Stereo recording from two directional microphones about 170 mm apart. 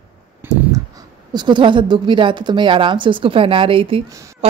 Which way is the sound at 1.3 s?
25° right (ahead or behind).